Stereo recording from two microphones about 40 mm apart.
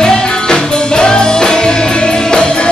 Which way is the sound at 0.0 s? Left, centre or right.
Centre.